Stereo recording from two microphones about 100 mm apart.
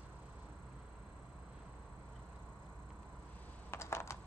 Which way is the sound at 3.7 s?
30° left (ahead or behind).